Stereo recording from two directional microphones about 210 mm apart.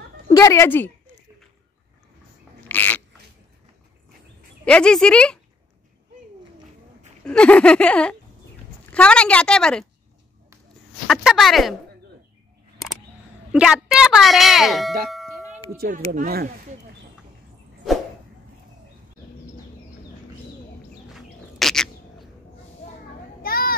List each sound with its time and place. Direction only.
0.3 s speech: 15° left (ahead or behind)
2.7 s a sound: 10° left (ahead or behind)
4.6 s speech: 5° left (ahead or behind)
7.2 s speech: 5° left (ahead or behind)
11.1 s speech: centre (ahead or behind)
13.5 s speech: 5° right (ahead or behind)
15.0 s ding: centre (ahead or behind)
15.8 s speech: 45° right (ahead or behind)
21.1 s bird: centre (ahead or behind)
23.4 s children playing: 45° left (ahead or behind)